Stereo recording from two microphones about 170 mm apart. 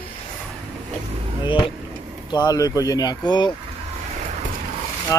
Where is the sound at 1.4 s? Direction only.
30° left (ahead or behind).